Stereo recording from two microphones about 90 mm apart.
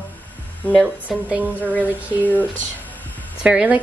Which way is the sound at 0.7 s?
Centre (ahead or behind).